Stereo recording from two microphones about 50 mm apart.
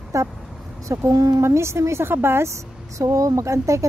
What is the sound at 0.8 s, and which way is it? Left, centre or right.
A woman's voice, right.